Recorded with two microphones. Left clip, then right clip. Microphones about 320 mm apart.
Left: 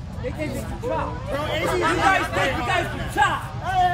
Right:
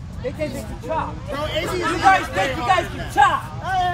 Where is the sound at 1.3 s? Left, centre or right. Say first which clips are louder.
Left 1 dB; centre.